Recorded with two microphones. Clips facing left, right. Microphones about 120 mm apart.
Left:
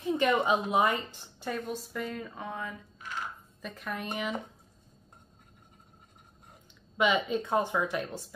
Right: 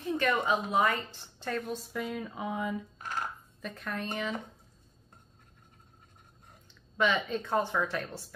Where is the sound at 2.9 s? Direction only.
45° right (ahead or behind).